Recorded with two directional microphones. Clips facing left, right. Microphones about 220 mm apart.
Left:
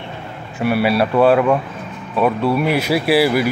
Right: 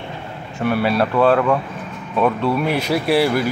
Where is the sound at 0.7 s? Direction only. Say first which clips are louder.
Left 2 dB; 10° left (ahead or behind).